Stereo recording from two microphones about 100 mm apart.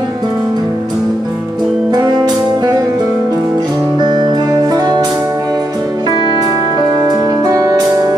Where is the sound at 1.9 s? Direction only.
45° right (ahead or behind).